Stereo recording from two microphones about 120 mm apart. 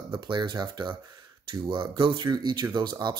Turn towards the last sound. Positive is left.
turn(degrees=-35)  # may be behind; listen again after turning